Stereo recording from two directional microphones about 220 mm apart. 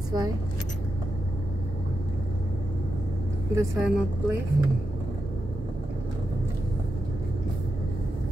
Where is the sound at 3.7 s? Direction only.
Centre (ahead or behind).